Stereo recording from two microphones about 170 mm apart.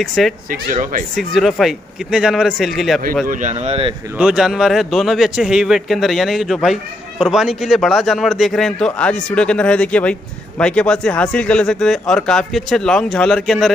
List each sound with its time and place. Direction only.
0.0 s a man's voice: centre (ahead or behind)
0.5 s speech: 55° right (ahead or behind)
1.1 s a man's voice: centre (ahead or behind)
3.3 s speech: 45° right (ahead or behind)
4.2 s a man's voice: 5° right (ahead or behind)